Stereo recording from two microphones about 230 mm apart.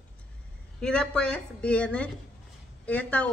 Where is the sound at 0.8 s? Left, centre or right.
Centre.